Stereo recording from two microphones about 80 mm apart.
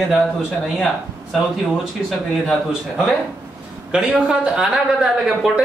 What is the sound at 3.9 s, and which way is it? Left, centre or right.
Speech, centre.